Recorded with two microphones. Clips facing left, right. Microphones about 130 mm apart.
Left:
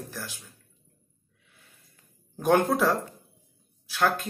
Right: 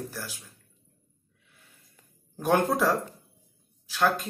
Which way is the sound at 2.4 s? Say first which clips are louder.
Left 2 dB; 5° right (ahead or behind).